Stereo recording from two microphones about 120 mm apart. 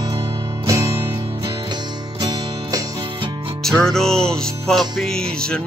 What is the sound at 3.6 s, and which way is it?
Music, 5° left (ahead or behind).